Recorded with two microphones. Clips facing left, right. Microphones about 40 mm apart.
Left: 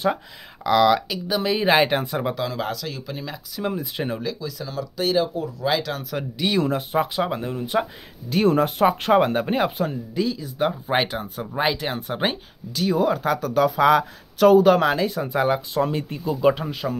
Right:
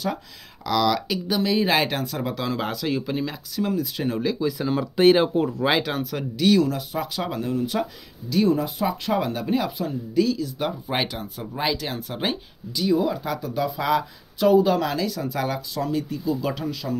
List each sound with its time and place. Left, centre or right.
0.7 s speech: left
1.0 s speech: centre
1.4 s speech: left
2.3 s speech: centre
3.6 s speech: left
4.4 s speech: right
5.7 s speech: centre
6.0 s speech: centre
6.6 s speech: left
8.3 s speech: left
10.1 s speech: left
12.8 s speech: left
15.8 s speech: left